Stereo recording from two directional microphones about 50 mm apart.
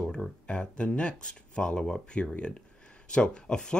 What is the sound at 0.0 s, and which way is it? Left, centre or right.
Speech, centre.